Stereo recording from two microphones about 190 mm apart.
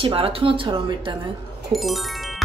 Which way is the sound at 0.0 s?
30° right (ahead or behind).